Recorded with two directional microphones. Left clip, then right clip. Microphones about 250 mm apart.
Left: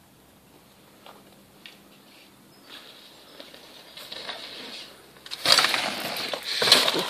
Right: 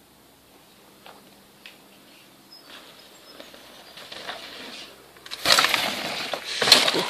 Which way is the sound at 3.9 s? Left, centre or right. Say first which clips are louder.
Even; centre.